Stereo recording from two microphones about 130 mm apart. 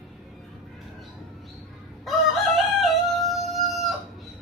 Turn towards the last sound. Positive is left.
turn(degrees=0)  # may be behind; listen again after turning